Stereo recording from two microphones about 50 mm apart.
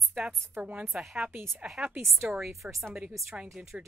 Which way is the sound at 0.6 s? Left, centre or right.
Right.